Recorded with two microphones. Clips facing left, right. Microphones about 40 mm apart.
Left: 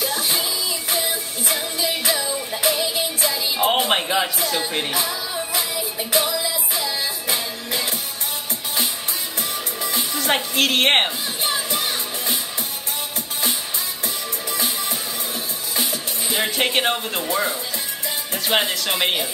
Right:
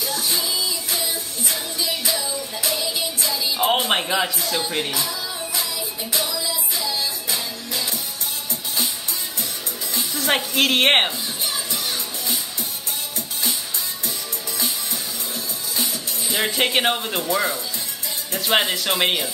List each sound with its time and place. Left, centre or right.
0.0 s music: left
1.8 s music: left
3.6 s speech: centre
4.9 s music: left
10.2 s a woman's voice: centre
11.4 s music: left
15.7 s music: left
16.3 s a woman's voice: centre
18.5 s a woman's voice: centre